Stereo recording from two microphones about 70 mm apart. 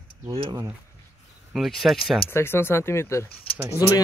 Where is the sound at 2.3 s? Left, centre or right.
Left.